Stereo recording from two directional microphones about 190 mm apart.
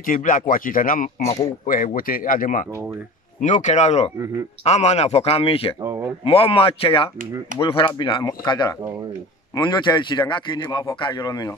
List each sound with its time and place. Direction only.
0.0 s speech: 45° left (ahead or behind)
5.9 s speech: 10° right (ahead or behind)
6.2 s a man's voice: 30° left (ahead or behind)